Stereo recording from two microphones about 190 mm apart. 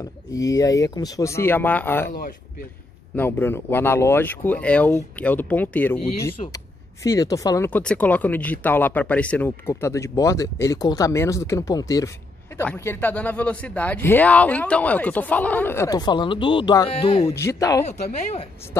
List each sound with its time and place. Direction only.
0.0 s speech: 15° left (ahead or behind)
3.2 s speech: 10° left (ahead or behind); by 17.3 s 30° left (ahead or behind)
17.3 s speech: 15° left (ahead or behind)